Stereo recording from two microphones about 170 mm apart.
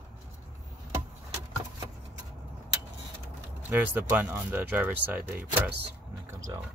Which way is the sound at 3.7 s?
10° right (ahead or behind).